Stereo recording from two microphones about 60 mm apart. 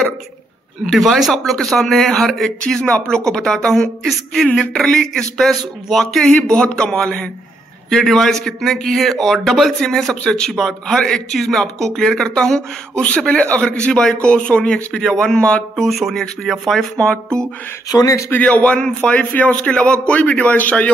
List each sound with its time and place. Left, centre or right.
0.9 s a man's voice: centre
6.2 s a man's voice: centre
15.7 s speech: centre
16.9 s a man's voice: centre
17.9 s a man's voice: left
18.3 s a man's voice: left